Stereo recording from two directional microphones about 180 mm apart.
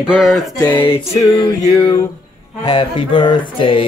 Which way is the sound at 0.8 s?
30° left (ahead or behind).